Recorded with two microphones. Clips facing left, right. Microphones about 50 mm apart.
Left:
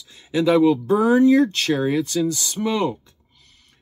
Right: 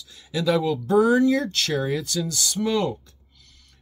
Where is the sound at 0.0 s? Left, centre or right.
Left.